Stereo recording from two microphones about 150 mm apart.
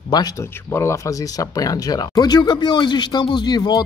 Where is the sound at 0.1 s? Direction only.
25° left (ahead or behind).